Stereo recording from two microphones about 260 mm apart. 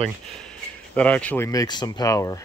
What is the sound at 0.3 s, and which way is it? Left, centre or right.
Speech, centre.